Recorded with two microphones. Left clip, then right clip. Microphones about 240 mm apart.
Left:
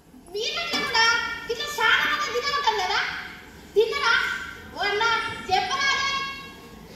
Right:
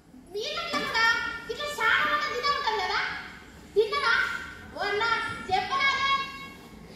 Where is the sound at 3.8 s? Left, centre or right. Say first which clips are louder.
Left 4 dB; left.